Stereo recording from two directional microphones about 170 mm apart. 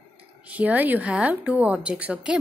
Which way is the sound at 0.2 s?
10° right (ahead or behind).